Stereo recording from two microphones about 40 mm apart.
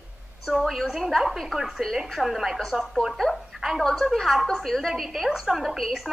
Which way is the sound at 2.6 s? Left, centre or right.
Centre.